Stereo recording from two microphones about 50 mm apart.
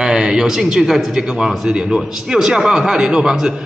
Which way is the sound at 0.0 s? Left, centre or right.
Centre.